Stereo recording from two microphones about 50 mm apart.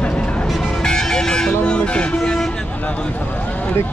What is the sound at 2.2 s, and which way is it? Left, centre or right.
Vehicle, centre.